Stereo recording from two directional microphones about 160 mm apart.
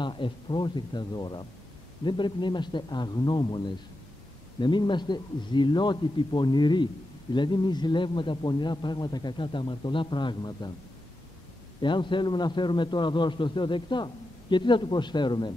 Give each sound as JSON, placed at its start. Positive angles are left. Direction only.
{"t": 0.0, "sound": "a man's voice", "side_deg": 30}
{"t": 11.8, "sound": "a man's voice", "side_deg": 30}